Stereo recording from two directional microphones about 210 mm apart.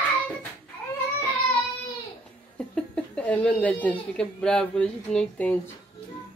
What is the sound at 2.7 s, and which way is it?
Speech, 5° left (ahead or behind).